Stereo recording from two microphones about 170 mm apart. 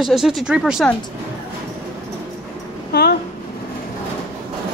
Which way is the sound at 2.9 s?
65° left (ahead or behind).